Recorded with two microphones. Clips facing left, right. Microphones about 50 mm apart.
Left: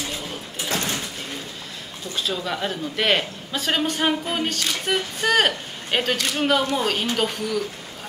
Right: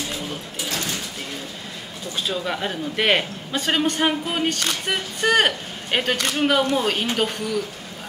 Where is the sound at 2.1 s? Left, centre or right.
Centre.